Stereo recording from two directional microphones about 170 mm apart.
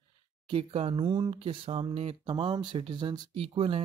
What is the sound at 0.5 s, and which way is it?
Speech, 30° right (ahead or behind).